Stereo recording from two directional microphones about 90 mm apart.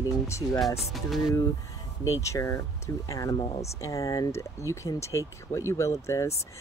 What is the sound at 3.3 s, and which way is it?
Speech, 55° left (ahead or behind).